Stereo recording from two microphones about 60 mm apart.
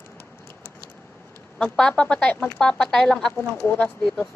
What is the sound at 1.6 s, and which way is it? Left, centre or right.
Speech, centre.